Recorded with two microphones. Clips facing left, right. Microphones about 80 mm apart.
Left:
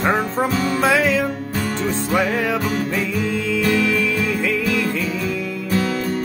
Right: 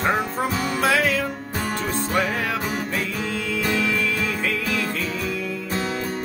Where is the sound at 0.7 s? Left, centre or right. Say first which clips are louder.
Left 3 dB; left.